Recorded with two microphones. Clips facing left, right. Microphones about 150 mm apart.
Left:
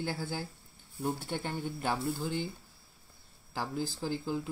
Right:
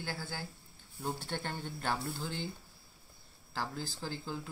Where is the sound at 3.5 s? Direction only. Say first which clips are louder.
Left 4 dB; 15° left (ahead or behind).